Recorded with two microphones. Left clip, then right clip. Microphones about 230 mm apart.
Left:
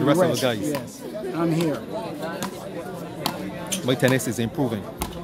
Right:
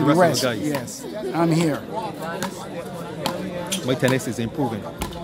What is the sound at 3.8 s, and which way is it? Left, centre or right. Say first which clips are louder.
Speech: left 1 dB; centre.